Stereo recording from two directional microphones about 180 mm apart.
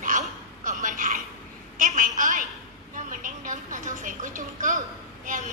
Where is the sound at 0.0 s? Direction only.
45° right (ahead or behind).